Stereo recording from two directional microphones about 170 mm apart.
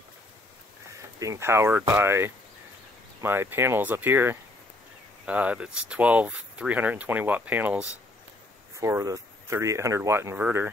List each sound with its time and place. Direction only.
1.2 s speech: 15° right (ahead or behind)